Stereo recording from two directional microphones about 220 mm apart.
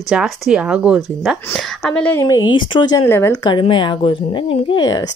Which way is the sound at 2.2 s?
20° left (ahead or behind).